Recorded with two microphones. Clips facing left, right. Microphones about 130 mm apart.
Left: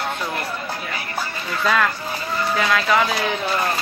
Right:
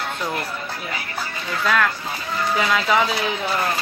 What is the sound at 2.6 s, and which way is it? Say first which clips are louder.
Speech: left 1 dB; 10° right (ahead or behind).